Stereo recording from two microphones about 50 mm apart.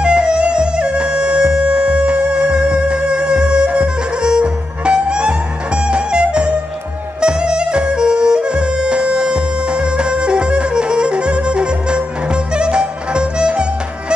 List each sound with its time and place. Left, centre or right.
0.0 s music: centre